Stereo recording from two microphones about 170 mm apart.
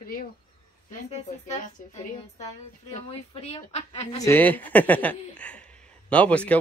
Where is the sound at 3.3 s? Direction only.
35° left (ahead or behind).